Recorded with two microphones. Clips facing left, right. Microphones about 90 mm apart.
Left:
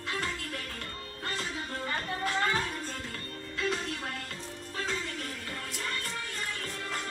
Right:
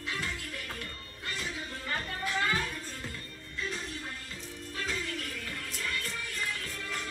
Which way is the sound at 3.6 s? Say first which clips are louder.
Left 5 dB; 70° left (ahead or behind).